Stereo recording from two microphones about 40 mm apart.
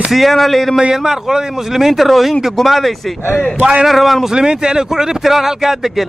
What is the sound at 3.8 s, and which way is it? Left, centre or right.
Speech, centre.